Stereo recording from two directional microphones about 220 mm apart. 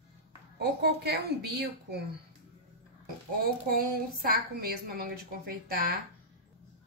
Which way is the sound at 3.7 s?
40° right (ahead or behind).